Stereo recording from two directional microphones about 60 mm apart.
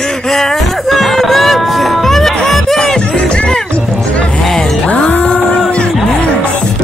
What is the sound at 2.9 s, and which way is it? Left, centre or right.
Music, centre.